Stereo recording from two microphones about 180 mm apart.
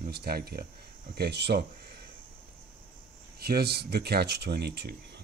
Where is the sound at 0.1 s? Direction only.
60° right (ahead or behind).